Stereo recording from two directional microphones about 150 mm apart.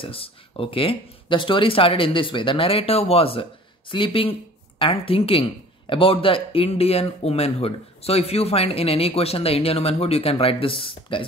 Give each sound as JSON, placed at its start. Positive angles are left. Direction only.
{"t": 0.0, "sound": "speech", "side_deg": 40}